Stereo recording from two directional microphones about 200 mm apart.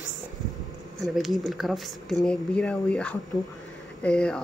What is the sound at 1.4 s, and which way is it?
Speech, centre (ahead or behind).